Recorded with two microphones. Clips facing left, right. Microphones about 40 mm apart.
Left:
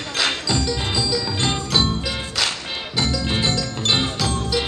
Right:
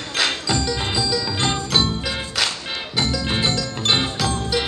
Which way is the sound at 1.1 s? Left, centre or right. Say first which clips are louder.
Even; centre.